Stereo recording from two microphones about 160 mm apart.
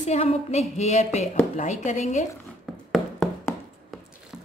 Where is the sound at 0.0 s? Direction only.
45° left (ahead or behind).